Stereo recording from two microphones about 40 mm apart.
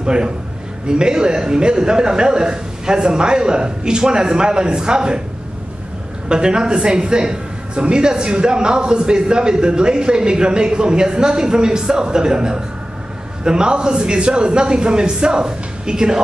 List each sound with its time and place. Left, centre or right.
0.0 s a man's voice: right
6.2 s a man's voice: right